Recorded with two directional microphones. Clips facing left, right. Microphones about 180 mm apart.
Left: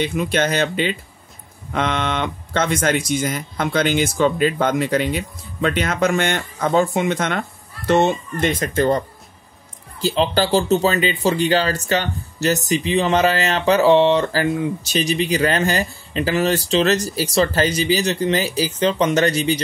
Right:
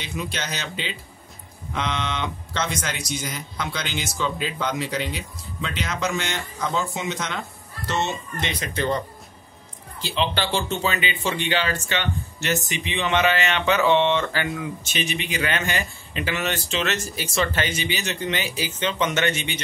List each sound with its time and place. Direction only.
0.0 s speech: 55° left (ahead or behind)
10.0 s speech: 40° left (ahead or behind)